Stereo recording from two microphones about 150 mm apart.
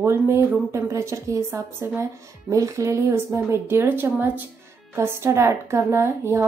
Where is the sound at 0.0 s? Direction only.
15° right (ahead or behind).